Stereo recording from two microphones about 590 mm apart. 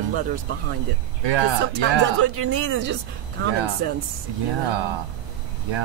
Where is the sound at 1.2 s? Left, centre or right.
Right.